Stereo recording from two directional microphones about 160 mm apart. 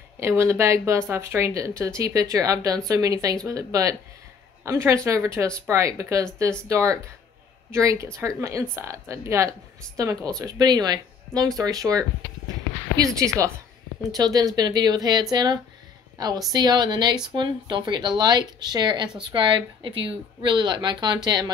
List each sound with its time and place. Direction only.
0.2 s a woman's voice: 15° right (ahead or behind)